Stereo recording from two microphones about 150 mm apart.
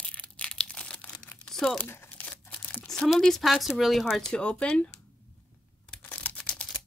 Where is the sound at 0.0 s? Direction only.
10° left (ahead or behind).